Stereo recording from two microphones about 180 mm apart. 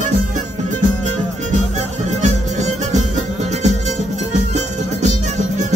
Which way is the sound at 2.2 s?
40° right (ahead or behind).